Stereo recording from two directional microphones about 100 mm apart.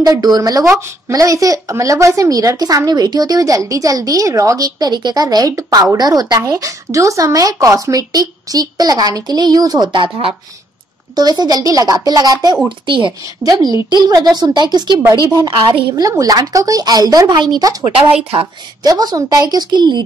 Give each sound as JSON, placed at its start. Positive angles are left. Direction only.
{"t": 0.0, "sound": "a woman's voice", "side_deg": -40}
{"t": 11.1, "sound": "a woman's voice", "side_deg": -40}
{"t": 12.6, "sound": "speech", "side_deg": -55}
{"t": 13.4, "sound": "a woman's voice", "side_deg": -40}
{"t": 18.8, "sound": "a woman's voice", "side_deg": -45}